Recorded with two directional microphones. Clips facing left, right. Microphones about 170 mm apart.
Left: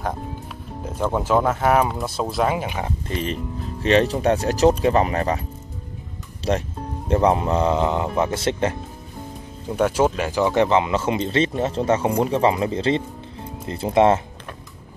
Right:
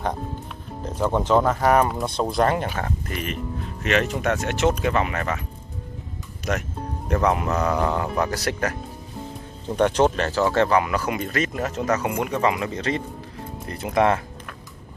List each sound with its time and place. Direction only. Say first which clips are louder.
1.1 s speech: even; 5° left (ahead or behind)
3.1 s speech: left 3 dB; 30° left (ahead or behind)
6.5 s speech: left 4 dB; 30° left (ahead or behind)
9.7 s speech: even; 5° left (ahead or behind); by 14.2 s 25° left (ahead or behind)